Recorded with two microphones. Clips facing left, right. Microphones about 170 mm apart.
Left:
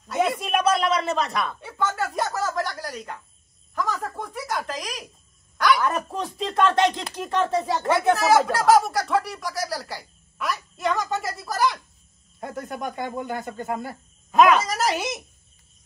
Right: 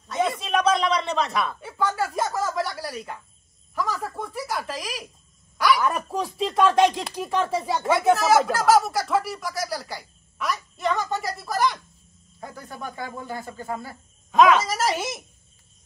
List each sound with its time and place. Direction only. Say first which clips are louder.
0.1 s a sound: left 1 dB; 10° left (ahead or behind)
3.7 s speech: even; centre (ahead or behind)
12.5 s speech: left 5 dB; 20° left (ahead or behind)
13.7 s speech: left 4 dB; centre (ahead or behind)